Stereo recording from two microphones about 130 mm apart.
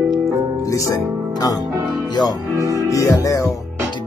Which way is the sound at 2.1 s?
30° left (ahead or behind).